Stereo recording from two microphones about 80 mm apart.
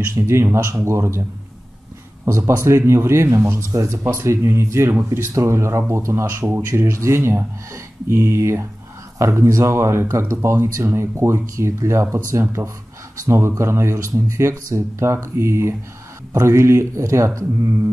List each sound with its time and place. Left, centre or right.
0.1 s speech: right
2.2 s speech: right